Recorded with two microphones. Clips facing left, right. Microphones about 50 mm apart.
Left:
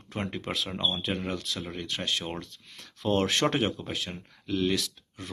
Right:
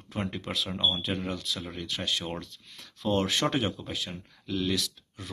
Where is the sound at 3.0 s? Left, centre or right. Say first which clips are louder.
Left 1 dB; centre.